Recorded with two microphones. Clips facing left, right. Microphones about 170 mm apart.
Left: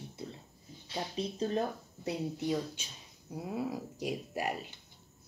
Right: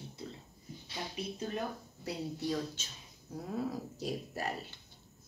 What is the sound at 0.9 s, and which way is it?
Speech, 30° left (ahead or behind).